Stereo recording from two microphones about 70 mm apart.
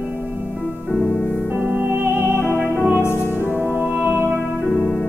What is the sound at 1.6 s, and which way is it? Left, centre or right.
Music, right.